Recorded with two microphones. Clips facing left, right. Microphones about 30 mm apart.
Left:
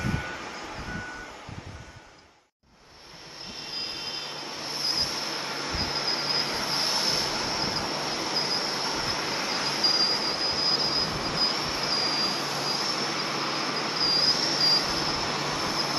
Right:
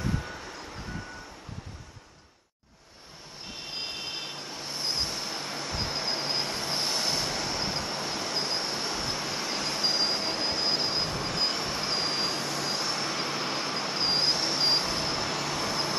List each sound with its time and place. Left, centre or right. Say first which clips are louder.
0.0 s vehicle: left 2 dB; left
3.6 s vehicle: left 1 dB; centre